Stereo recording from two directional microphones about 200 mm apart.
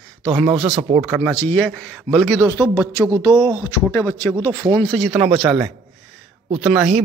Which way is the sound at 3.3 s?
20° right (ahead or behind).